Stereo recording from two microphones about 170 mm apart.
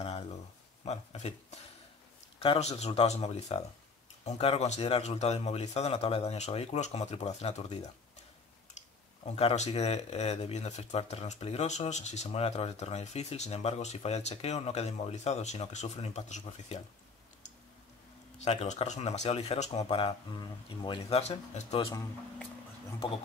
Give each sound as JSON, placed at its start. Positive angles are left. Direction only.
{"t": 0.0, "sound": "a sound", "side_deg": 40}
{"t": 0.8, "sound": "speech", "side_deg": 40}
{"t": 18.4, "sound": "speech", "side_deg": 40}